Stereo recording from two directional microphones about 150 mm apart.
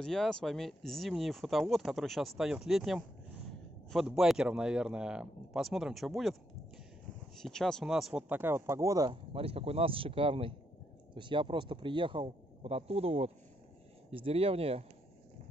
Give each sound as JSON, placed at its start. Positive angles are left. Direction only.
{"t": 0.0, "sound": "speech", "side_deg": 5}
{"t": 7.4, "sound": "speech", "side_deg": 5}